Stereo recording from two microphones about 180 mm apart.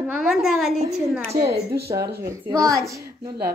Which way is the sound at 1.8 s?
15° right (ahead or behind).